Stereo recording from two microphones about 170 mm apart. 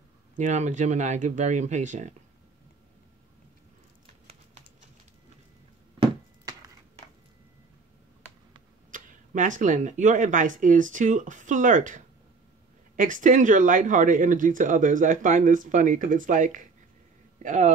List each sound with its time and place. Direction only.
0.4 s speech: 45° right (ahead or behind)
8.9 s speech: 50° right (ahead or behind)